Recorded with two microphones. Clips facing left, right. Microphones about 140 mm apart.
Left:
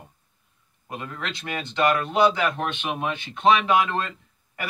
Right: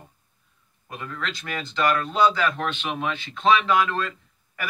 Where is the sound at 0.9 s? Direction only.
20° left (ahead or behind).